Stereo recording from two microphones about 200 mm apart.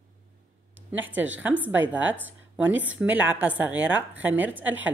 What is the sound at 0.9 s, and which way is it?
A woman's voice, 10° right (ahead or behind).